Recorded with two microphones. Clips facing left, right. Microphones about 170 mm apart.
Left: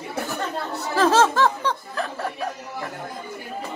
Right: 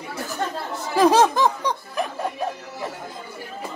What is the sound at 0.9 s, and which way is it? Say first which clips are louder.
Snicker: right 2 dB; 15° right (ahead or behind).